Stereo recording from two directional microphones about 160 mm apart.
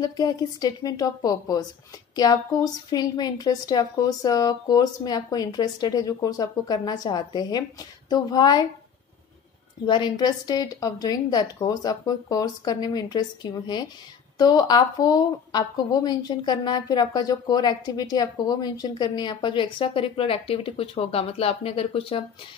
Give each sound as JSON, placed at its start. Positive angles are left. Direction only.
{"t": 0.0, "sound": "a woman's voice", "side_deg": 25}
{"t": 9.8, "sound": "a woman's voice", "side_deg": 30}